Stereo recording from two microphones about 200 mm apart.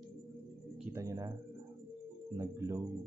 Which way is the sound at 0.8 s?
15° right (ahead or behind).